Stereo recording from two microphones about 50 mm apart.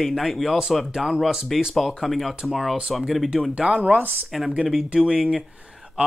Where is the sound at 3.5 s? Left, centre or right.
Right.